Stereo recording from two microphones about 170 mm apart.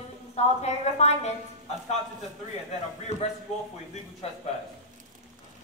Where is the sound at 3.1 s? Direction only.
40° left (ahead or behind).